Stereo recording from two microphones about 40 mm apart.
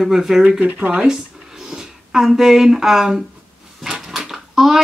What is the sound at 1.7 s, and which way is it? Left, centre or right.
Speech, centre.